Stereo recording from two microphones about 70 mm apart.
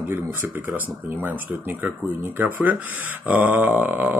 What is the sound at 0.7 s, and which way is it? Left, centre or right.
Speech, right.